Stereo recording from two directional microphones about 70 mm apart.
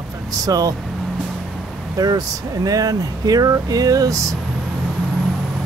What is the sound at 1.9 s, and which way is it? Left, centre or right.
Speech, right.